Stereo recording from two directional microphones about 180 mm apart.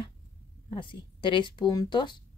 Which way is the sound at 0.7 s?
30° left (ahead or behind).